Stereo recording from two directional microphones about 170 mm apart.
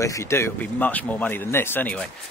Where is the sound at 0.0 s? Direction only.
15° left (ahead or behind).